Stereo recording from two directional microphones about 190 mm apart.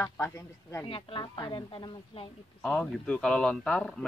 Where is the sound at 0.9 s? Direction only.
30° left (ahead or behind).